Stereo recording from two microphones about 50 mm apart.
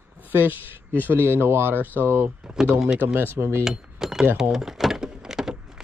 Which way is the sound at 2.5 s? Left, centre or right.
Centre.